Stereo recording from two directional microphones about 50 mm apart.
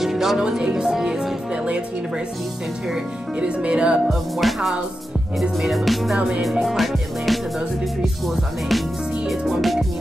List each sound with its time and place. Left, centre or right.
0.0 s music: centre
3.3 s speech: right
4.1 s music: centre
6.1 s speech: right
6.6 s music: centre